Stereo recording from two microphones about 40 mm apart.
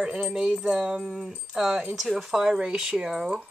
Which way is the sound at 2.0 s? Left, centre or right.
Centre.